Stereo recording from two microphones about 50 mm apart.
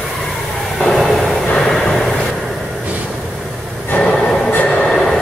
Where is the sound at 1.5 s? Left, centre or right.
Centre.